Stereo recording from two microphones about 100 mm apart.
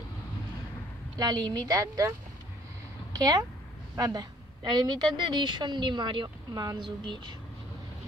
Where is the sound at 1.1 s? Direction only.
40° right (ahead or behind).